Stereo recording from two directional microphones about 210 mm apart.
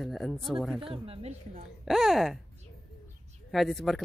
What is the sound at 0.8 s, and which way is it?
Speech, 25° right (ahead or behind).